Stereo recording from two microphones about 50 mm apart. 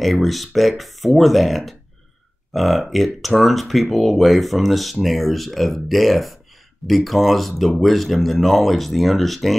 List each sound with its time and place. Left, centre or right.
0.0 s speech: centre